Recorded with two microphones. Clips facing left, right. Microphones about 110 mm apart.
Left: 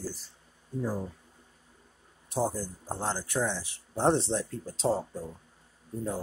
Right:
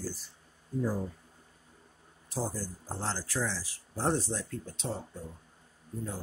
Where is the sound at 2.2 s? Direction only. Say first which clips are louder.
Left 5 dB; 20° left (ahead or behind).